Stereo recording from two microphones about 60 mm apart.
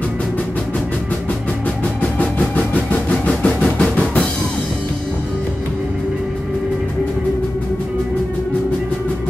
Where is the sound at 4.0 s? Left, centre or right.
Left.